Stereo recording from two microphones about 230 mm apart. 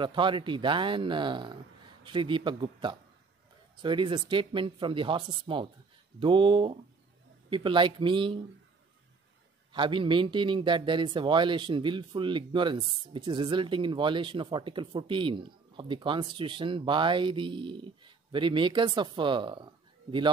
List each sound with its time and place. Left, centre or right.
0.0 s speech: right
9.7 s speech: right